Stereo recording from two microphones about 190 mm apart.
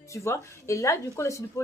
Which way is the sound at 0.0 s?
15° left (ahead or behind).